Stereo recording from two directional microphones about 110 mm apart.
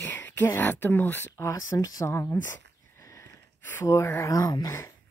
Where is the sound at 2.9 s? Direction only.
25° left (ahead or behind).